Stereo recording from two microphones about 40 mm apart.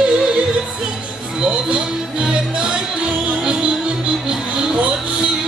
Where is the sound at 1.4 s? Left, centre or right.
Right.